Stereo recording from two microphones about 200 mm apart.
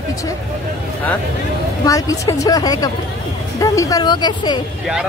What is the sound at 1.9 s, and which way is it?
A woman's voice, 15° left (ahead or behind).